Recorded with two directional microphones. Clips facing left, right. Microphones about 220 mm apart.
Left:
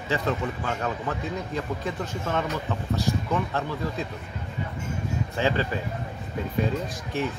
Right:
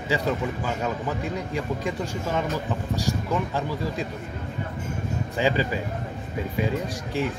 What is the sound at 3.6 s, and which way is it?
Speech, 10° right (ahead or behind).